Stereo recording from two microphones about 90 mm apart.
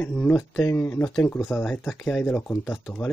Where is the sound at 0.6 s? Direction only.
30° left (ahead or behind).